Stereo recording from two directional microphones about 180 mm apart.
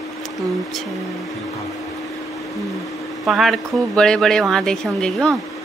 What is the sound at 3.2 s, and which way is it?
Speech, centre (ahead or behind).